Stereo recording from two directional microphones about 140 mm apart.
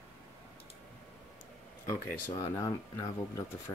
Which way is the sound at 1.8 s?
25° left (ahead or behind).